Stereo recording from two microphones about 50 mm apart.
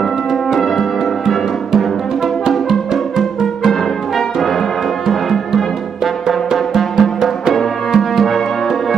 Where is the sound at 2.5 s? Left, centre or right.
Centre.